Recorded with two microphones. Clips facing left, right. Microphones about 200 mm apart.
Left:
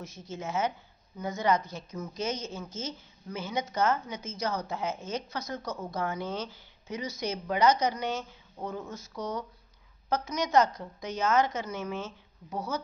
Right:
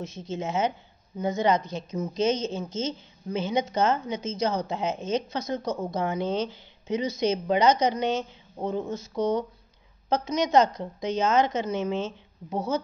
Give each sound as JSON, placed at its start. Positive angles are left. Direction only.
{"t": 0.0, "sound": "a woman's voice", "side_deg": -25}